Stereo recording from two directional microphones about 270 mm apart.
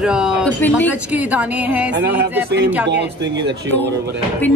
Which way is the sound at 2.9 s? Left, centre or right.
Right.